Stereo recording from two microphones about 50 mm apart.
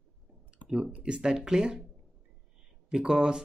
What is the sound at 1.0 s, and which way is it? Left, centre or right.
Speech, centre.